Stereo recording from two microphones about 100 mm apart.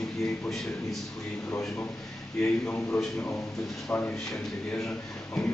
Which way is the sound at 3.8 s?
15° left (ahead or behind).